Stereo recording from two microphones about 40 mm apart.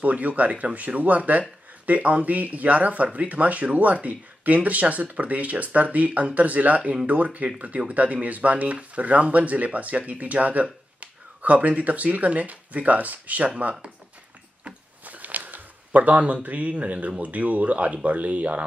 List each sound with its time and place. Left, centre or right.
0.0 s speech: right
15.0 s a sound: right
16.4 s speech: right